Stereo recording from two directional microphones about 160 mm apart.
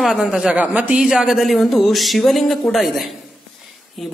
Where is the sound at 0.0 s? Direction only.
Centre (ahead or behind).